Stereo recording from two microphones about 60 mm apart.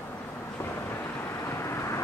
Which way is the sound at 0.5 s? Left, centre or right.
Left.